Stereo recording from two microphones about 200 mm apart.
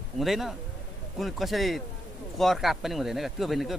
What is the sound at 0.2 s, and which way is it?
Speech, centre (ahead or behind).